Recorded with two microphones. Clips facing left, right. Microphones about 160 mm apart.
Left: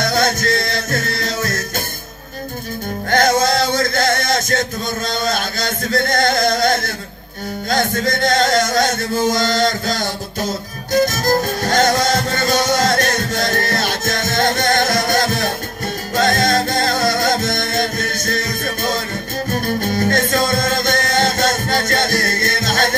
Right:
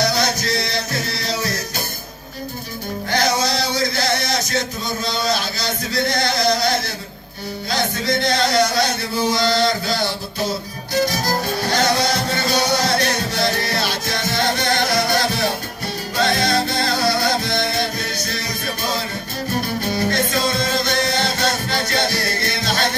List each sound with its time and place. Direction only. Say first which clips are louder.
0.0 s music: left 3 dB; 50° left (ahead or behind)
3.1 s music: left 5 dB; 50° left (ahead or behind)
5.2 s a sound: left 1 dB; 50° left (ahead or behind)
7.7 s chant: left 3 dB; 50° left (ahead or behind)
16.2 s music: left 3 dB; 45° left (ahead or behind)
19.5 s music: left 3 dB; 45° left (ahead or behind)